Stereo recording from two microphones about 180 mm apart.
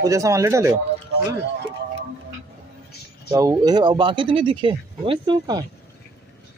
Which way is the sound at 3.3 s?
20° right (ahead or behind).